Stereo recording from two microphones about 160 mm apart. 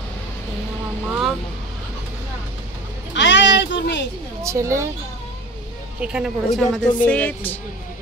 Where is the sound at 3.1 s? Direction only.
90° left.